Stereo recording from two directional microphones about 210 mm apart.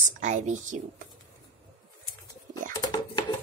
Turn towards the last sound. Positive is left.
turn(degrees=20)  # may be behind; listen again after turning